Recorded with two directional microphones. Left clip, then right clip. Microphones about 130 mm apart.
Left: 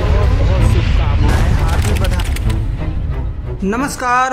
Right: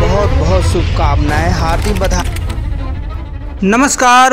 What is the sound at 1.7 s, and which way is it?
Speech, centre (ahead or behind).